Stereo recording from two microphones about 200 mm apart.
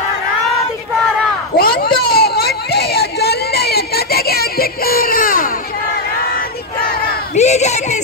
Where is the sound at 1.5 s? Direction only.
50° left (ahead or behind).